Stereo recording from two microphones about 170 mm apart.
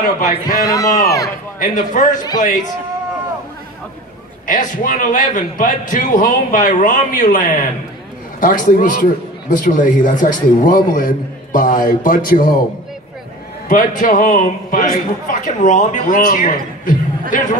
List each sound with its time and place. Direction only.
0.0 s a man's voice: 55° left (ahead or behind)
0.7 s speech: 20° left (ahead or behind)
1.6 s a man's voice: 50° left (ahead or behind)
4.5 s a man's voice: 50° left (ahead or behind)
13.7 s a man's voice: 50° left (ahead or behind)